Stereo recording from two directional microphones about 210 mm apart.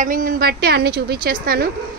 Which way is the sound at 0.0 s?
40° right (ahead or behind).